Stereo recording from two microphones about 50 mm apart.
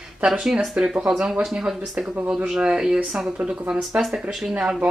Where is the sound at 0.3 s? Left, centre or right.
Centre.